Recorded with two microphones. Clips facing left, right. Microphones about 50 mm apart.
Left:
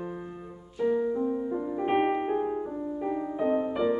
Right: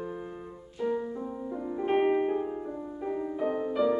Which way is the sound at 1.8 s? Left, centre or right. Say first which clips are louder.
Right 1 dB; centre.